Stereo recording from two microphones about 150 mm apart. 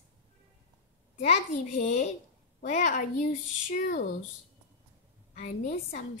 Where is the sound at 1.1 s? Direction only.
50° left (ahead or behind); by 4.0 s 70° left (ahead or behind).